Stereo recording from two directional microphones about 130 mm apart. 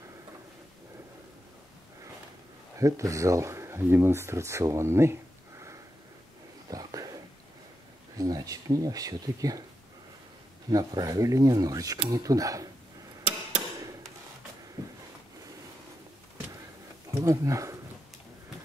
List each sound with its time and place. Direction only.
2.8 s speech: 25° right (ahead or behind)
6.7 s a sound: 25° right (ahead or behind)
8.2 s speech: 30° right (ahead or behind)
10.7 s speech: 30° right (ahead or behind)
17.2 s speech: 25° right (ahead or behind)